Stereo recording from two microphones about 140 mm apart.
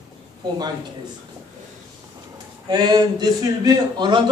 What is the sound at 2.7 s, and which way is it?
A man's voice, 30° right (ahead or behind).